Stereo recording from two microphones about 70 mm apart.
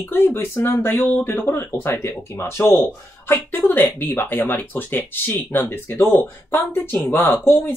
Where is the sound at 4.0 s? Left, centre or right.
Left.